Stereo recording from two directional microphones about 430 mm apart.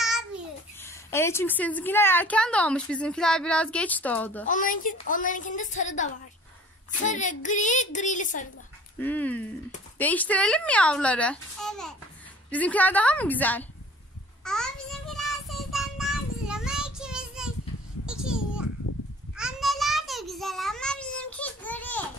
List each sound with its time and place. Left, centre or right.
0.0 s a sound: centre
0.8 s a woman's voice: centre
4.5 s a woman's voice: centre
9.0 s a woman's voice: centre
14.4 s child singing: centre
18.0 s a sound: centre
19.3 s child singing: centre